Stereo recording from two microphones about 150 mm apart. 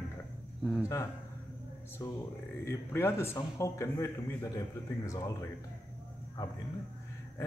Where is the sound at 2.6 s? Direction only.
15° left (ahead or behind).